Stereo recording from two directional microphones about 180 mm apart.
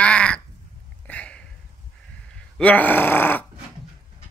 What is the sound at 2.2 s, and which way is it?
Speech, 5° left (ahead or behind).